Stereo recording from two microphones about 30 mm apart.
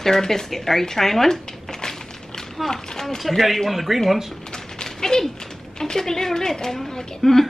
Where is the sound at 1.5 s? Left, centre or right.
Left.